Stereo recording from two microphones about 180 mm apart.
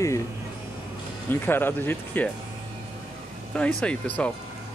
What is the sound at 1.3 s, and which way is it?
Speech, 10° left (ahead or behind).